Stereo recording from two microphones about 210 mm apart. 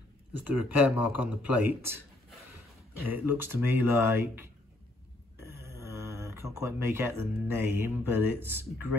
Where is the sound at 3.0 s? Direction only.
10° right (ahead or behind).